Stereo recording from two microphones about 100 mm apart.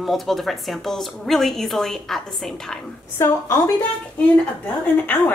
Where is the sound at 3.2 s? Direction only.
25° left (ahead or behind).